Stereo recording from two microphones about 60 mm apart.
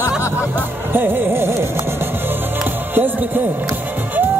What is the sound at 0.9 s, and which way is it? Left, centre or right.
Music, right.